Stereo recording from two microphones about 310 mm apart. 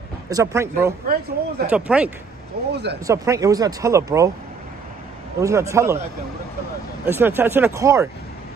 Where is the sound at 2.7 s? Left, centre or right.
Right.